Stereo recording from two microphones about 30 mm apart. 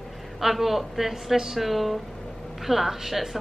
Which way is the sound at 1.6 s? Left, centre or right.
Centre.